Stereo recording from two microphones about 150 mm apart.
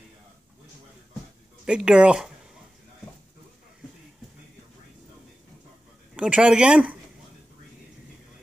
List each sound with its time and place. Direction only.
1.7 s speech: 5° right (ahead or behind)
6.1 s speech: 10° right (ahead or behind)